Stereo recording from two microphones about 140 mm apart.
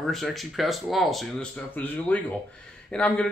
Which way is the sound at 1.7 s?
10° left (ahead or behind).